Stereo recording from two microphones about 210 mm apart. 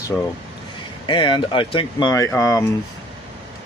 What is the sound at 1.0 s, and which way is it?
Speech, 25° left (ahead or behind).